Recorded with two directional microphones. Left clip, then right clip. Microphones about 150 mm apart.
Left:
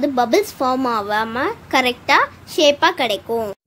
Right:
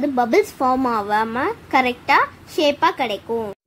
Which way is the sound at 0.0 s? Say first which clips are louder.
Left 1 dB; 5° right (ahead or behind).